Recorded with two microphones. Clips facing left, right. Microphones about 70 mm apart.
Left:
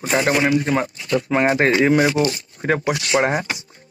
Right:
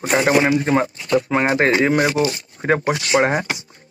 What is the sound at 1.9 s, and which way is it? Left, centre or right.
Speech, right.